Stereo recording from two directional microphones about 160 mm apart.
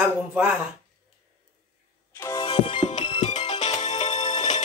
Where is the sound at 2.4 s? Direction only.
35° left (ahead or behind).